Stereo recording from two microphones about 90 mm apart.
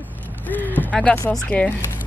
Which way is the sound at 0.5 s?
20° left (ahead or behind).